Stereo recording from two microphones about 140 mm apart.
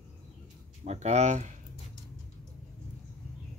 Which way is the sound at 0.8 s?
55° right (ahead or behind).